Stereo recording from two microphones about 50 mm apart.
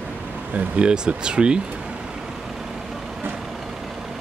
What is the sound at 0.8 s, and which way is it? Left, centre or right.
Speech, centre.